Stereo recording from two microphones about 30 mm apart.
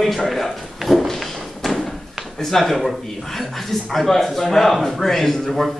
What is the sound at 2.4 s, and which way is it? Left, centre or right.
A man's voice, centre.